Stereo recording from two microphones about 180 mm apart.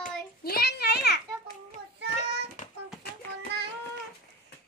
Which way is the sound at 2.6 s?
45° left (ahead or behind).